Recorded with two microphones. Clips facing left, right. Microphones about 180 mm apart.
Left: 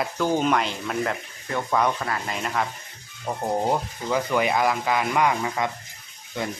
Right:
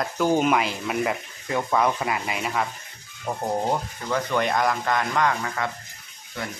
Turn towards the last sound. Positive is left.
turn(degrees=20)  # may be behind; listen again after turning